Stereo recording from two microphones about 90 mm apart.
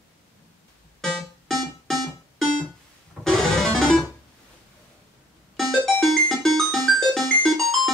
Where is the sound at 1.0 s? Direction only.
5° left (ahead or behind).